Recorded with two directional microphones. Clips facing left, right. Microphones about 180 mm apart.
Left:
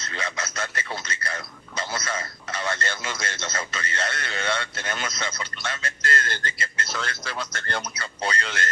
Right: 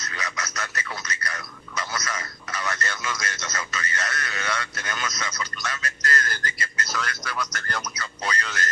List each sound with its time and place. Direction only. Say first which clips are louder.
0.0 s a man's voice: left 2 dB; 30° left (ahead or behind)